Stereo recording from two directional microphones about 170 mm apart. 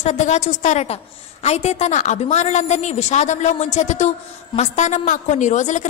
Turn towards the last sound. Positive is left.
turn(degrees=45)  # may be behind; listen again after turning